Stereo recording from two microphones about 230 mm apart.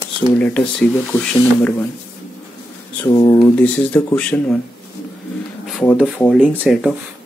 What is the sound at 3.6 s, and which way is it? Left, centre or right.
Speech, centre.